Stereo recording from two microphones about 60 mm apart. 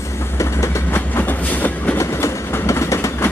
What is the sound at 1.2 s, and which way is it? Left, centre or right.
Train, left.